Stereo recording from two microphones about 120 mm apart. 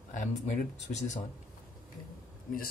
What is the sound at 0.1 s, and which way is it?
Speech, 90° left.